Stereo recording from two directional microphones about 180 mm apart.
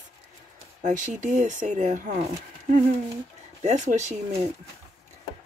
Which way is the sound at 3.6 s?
40° right (ahead or behind).